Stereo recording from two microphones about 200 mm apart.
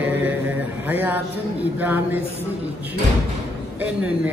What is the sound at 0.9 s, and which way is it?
Speech, 10° right (ahead or behind).